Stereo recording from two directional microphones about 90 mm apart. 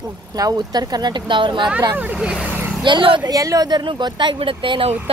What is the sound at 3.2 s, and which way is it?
Speech, 40° right (ahead or behind).